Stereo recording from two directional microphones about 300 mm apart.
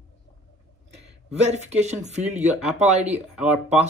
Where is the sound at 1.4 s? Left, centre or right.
Right.